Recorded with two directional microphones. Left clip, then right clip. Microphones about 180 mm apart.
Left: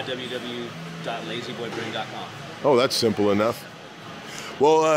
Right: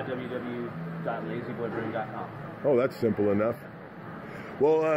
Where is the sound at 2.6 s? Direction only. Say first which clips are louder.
Left 6 dB; 50° left (ahead or behind).